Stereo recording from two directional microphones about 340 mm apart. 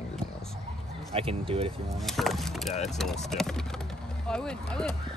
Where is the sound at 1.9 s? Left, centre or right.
Centre.